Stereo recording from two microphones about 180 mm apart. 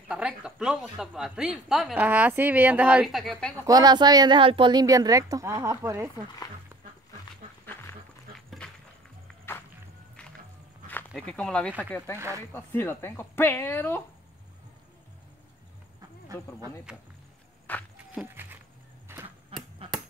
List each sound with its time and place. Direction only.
0.1 s speech: 5° right (ahead or behind)
3.6 s speech: 20° right (ahead or behind)
7.6 s wild animals: 10° left (ahead or behind)
10.9 s speech: 5° left (ahead or behind)
16.9 s speech: 5° right (ahead or behind)
17.7 s walk: 10° left (ahead or behind)
18.1 s sheep: 10° right (ahead or behind)
19.2 s a sound: 30° right (ahead or behind)